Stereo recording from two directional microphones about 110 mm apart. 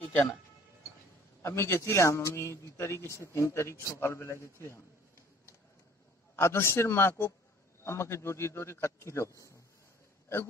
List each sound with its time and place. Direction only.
1.4 s a man's voice: 25° left (ahead or behind)
6.3 s a man's voice: 20° left (ahead or behind)